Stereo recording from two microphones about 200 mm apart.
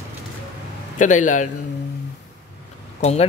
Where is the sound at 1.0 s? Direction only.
40° left (ahead or behind).